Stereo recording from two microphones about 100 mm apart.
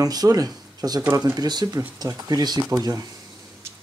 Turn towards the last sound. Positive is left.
turn(degrees=-40)  # may be behind; listen again after turning